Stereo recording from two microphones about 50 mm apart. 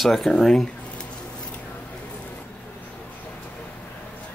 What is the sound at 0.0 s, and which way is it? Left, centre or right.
Speech, centre.